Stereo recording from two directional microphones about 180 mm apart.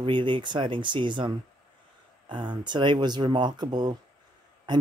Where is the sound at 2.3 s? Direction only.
25° right (ahead or behind).